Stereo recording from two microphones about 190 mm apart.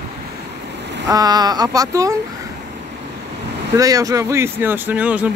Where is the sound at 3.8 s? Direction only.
20° right (ahead or behind).